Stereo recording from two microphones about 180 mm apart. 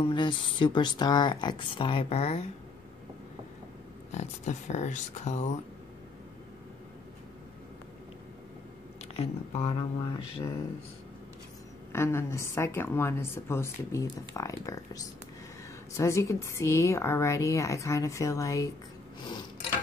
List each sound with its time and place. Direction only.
0.0 s speech: 25° left (ahead or behind)
4.1 s speech: 40° left (ahead or behind)
9.1 s speech: 35° left (ahead or behind)
11.9 s a woman's voice: 15° left (ahead or behind)